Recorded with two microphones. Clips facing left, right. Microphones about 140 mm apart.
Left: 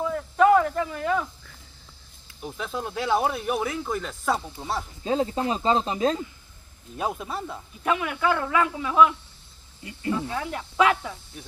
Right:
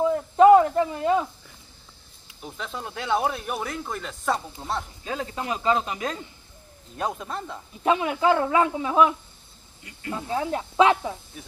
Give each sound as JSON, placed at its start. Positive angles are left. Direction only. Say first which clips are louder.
{"t": 0.0, "sound": "a sound", "louder": "right 4 dB", "side_deg": -25}
{"t": 2.4, "sound": "speech", "louder": "left 3 dB", "side_deg": 0}
{"t": 5.0, "sound": "speech", "louder": "left 6 dB", "side_deg": 25}
{"t": 7.0, "sound": "speech", "louder": "even", "side_deg": 5}
{"t": 7.8, "sound": "speech", "louder": "right 3 dB", "side_deg": -25}